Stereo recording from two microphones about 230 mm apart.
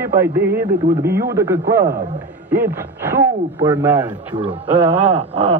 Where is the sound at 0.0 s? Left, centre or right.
Centre.